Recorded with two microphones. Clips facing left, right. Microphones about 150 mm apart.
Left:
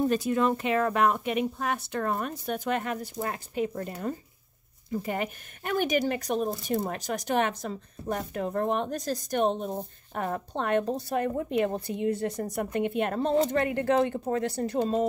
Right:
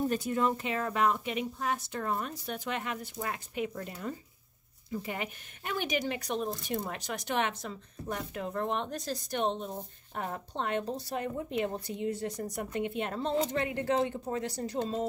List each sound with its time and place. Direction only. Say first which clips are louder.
0.1 s speech: left 4 dB; 90° left; by 15.0 s 60° left (ahead or behind)